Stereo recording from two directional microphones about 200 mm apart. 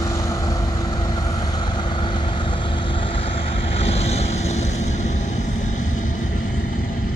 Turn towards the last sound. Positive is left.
turn(degrees=40)  # may be behind; listen again after turning